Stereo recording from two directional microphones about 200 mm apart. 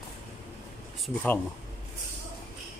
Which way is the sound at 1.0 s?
10° left (ahead or behind).